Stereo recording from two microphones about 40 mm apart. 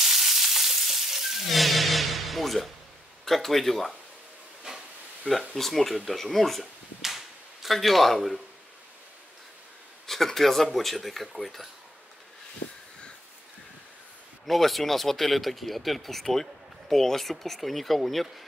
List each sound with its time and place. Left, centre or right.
0.1 s sizzle: centre
3.3 s speech: centre
5.3 s speech: right
5.6 s speech: centre
7.0 s a sound: centre
10.0 s speech: centre
14.4 s speech: centre